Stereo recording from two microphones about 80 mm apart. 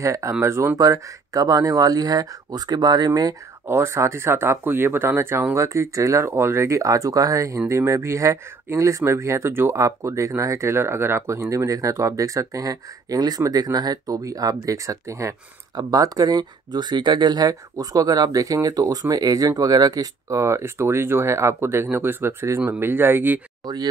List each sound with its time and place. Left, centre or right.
0.0 s speech: right
0.7 s speech: right
3.6 s speech: right
17.5 s speech: right
20.2 s speech: right
23.6 s speech: right